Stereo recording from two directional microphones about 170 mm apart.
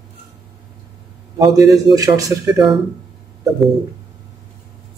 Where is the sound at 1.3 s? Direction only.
20° right (ahead or behind).